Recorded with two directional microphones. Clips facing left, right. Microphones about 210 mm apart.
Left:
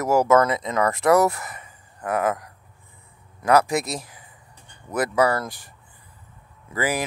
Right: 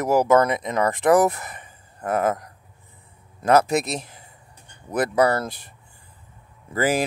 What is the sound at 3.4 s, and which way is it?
Speech, 20° right (ahead or behind).